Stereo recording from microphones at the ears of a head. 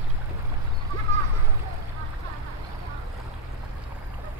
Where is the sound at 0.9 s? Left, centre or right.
Right.